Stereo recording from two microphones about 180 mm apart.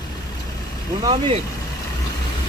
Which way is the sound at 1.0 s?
30° right (ahead or behind).